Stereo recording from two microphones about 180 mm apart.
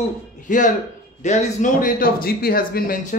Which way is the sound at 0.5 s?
45° left (ahead or behind).